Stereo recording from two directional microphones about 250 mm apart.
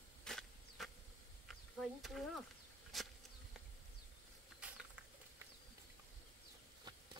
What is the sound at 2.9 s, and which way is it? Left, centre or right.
Insect, centre.